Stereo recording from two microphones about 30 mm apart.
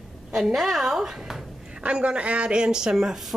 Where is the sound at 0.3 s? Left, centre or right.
Centre.